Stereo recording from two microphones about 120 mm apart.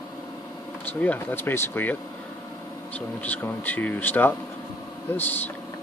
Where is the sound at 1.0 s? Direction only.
15° left (ahead or behind).